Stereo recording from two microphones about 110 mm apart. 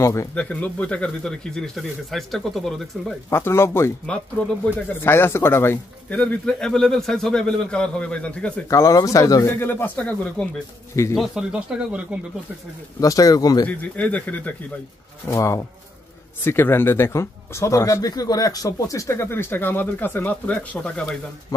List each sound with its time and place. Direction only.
0.0 s speech: 30° left (ahead or behind)
0.3 s speech: 10° left (ahead or behind)
3.3 s speech: 25° left (ahead or behind)
6.1 s a man's voice: 10° left (ahead or behind)
8.6 s speech: 30° left (ahead or behind)
9.6 s a man's voice: 20° left (ahead or behind)
11.1 s speech: 5° right (ahead or behind)
13.0 s speech: 30° left (ahead or behind)
13.7 s a man's voice: 15° left (ahead or behind)
15.2 s a man's voice: 25° left (ahead or behind); by 21.2 s 10° left (ahead or behind)